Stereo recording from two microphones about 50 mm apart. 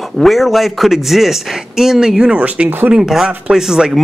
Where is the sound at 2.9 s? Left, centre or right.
Centre.